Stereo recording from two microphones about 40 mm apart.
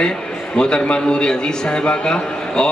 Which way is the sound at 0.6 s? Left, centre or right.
Left.